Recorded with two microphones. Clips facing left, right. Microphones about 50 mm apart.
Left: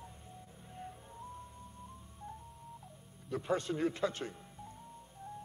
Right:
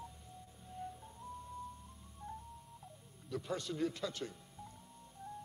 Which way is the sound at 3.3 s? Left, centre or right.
Left.